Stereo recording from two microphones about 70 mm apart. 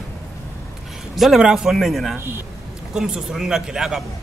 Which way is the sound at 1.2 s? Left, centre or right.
Centre.